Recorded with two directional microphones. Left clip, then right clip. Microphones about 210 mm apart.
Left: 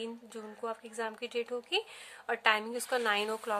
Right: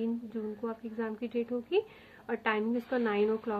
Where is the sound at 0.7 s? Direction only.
55° left (ahead or behind).